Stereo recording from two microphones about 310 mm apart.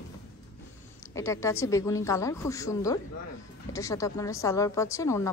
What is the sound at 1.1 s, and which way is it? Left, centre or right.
A woman's voice, centre.